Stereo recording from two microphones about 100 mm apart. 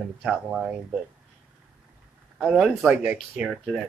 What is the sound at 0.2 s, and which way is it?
Speech, 10° right (ahead or behind).